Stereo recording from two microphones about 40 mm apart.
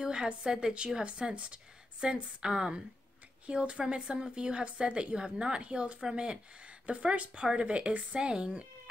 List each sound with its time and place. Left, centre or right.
0.0 s a woman's voice: centre
2.0 s a woman's voice: centre